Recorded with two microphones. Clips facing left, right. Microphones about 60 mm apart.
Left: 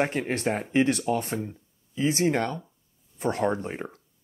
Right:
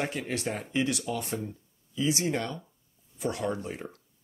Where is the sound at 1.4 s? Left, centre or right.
Left.